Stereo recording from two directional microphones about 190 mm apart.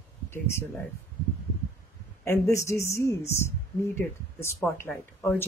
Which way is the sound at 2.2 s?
15° left (ahead or behind).